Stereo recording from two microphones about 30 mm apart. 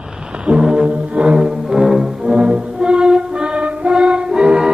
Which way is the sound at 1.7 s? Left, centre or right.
Centre.